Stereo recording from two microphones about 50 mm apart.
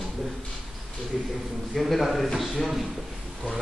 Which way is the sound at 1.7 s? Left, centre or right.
Centre.